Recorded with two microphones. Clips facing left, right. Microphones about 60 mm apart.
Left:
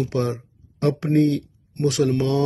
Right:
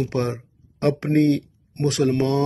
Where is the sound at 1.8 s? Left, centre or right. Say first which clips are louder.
Even; right.